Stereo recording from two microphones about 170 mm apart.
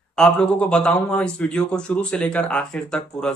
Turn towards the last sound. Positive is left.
turn(degrees=5)  # may be behind; listen again after turning